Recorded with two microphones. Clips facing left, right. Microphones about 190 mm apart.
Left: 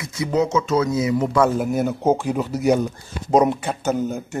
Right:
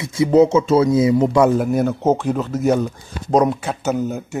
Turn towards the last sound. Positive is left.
turn(degrees=-5)  # may be behind; listen again after turning